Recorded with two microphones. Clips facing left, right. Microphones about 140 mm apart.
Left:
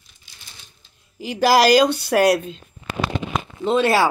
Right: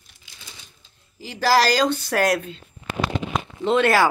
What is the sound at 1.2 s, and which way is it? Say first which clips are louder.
Speech: left 3 dB; 15° left (ahead or behind).